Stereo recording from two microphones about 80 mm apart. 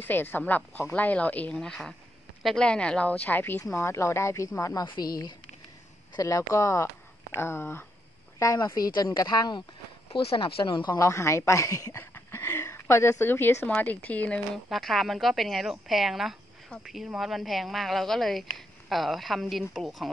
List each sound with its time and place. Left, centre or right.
0.0 s speech: left
1.6 s speech: centre; by 3.6 s left
3.7 s speech: left
4.8 s a woman's voice: left
6.1 s speech: left
8.6 s speech: left
10.1 s speech: left
11.0 s speech: left
13.7 s speech: left
14.7 s speech: centre